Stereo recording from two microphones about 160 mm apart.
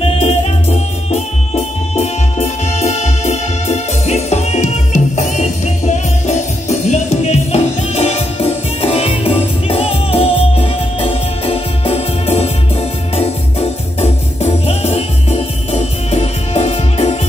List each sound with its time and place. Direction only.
0.0 s music: 40° left (ahead or behind)